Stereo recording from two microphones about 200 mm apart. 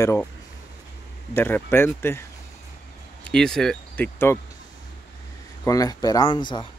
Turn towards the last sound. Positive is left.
turn(degrees=25)  # may be behind; listen again after turning